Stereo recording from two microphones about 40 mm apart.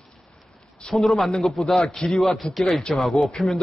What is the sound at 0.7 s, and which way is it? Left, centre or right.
A man's voice, centre.